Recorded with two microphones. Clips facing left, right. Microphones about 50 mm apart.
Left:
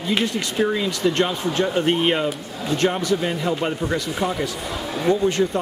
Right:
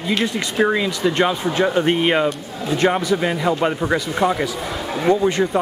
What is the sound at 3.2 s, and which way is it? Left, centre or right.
Speech, right.